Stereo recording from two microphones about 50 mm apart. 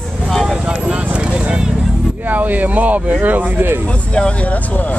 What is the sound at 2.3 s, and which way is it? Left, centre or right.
Speech, right.